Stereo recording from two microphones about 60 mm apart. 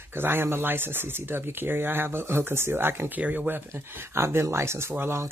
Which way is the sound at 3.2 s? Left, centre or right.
Right.